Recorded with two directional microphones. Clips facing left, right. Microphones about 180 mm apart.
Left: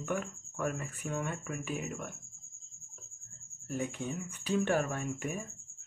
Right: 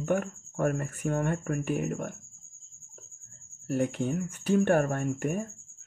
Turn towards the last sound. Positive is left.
turn(degrees=-55)  # may be behind; listen again after turning